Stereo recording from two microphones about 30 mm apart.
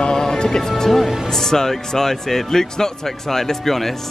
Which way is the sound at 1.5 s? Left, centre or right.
Centre.